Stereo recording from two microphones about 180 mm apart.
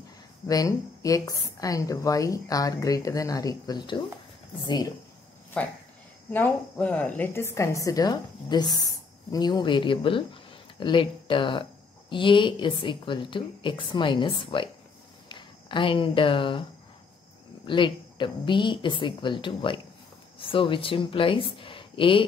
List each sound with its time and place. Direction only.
0.5 s a woman's voice: 20° left (ahead or behind)
5.5 s a woman's voice: 5° left (ahead or behind); by 16.6 s 30° left (ahead or behind)
17.6 s a woman's voice: 25° left (ahead or behind)